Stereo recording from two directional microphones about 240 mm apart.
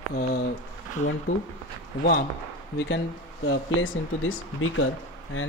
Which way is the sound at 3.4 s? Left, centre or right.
Left.